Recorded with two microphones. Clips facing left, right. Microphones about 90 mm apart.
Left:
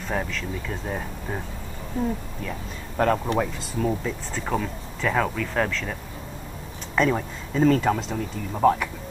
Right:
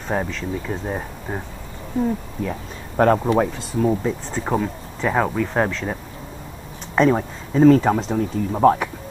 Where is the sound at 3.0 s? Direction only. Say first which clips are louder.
Right 6 dB; 20° right (ahead or behind).